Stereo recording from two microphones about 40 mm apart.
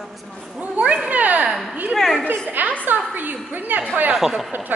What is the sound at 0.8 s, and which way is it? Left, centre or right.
Cat, right.